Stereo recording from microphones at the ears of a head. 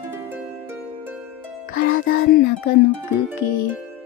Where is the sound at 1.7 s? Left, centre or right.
Left.